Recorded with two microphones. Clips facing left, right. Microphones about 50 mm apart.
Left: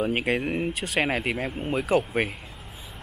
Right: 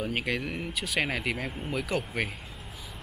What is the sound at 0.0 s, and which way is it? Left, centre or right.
Speech, left.